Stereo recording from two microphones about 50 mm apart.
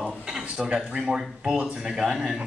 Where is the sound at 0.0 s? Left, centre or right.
Centre.